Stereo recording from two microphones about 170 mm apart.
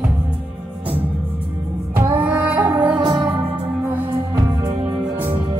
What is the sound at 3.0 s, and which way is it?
Music, 25° right (ahead or behind).